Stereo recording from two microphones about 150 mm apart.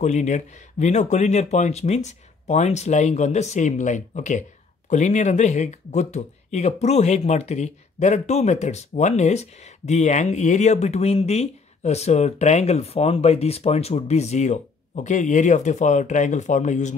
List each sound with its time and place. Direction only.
0.0 s speech: 50° left (ahead or behind)